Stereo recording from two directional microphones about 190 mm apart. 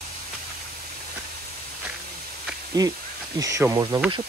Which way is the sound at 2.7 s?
20° right (ahead or behind).